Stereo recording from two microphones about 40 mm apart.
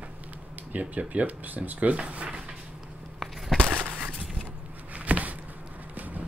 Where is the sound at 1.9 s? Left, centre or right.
Right.